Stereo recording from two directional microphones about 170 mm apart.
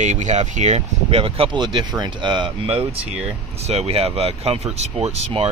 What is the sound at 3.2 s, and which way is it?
Speech, 40° right (ahead or behind).